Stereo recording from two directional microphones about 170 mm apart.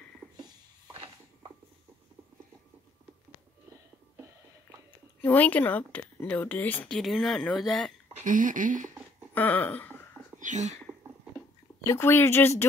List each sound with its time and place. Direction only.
5.2 s speech: 10° left (ahead or behind)
8.2 s speech: 50° right (ahead or behind)
9.3 s speech: 10° left (ahead or behind)
10.4 s speech: 45° right (ahead or behind)
11.8 s speech: 15° left (ahead or behind)